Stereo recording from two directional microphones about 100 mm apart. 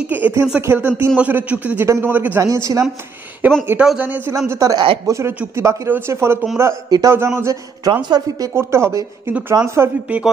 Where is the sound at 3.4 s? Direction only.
15° right (ahead or behind).